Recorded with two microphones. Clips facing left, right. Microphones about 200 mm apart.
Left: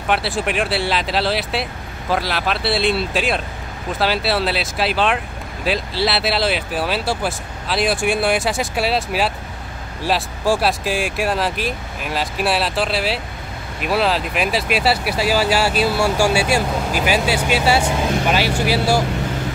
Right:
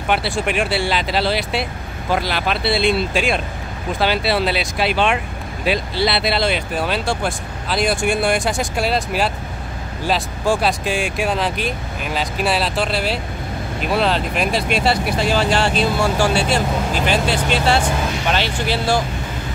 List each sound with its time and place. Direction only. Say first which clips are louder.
0.1 s speech: even; centre (ahead or behind)